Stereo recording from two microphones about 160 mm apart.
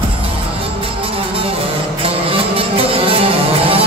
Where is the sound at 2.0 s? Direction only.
35° right (ahead or behind).